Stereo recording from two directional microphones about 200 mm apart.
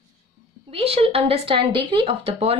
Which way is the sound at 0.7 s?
30° right (ahead or behind).